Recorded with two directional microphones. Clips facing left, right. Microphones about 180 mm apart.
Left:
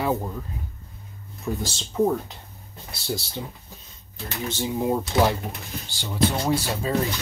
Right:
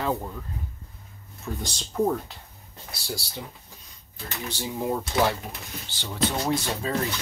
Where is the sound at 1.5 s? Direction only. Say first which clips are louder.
Left 5 dB; 10° left (ahead or behind).